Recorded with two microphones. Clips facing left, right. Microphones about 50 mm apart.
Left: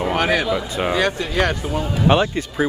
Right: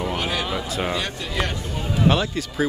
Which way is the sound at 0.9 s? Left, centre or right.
Left.